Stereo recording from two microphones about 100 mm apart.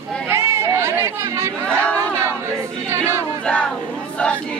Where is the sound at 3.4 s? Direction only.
10° left (ahead or behind).